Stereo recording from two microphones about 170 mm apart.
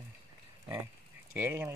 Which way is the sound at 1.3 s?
10° right (ahead or behind).